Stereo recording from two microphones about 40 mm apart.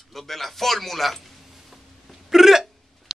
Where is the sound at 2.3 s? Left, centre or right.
Centre.